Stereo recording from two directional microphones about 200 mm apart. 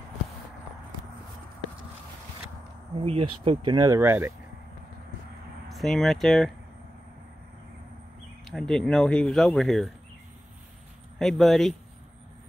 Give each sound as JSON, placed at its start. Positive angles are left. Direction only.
{"t": 3.1, "sound": "speech", "side_deg": -25}
{"t": 5.7, "sound": "speech", "side_deg": 0}
{"t": 8.5, "sound": "speech", "side_deg": 0}
{"t": 11.1, "sound": "speech", "side_deg": 0}